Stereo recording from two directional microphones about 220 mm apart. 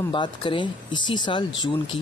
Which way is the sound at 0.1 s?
20° left (ahead or behind).